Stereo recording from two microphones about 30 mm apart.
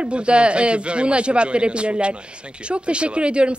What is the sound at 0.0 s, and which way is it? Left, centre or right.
A woman's voice, right.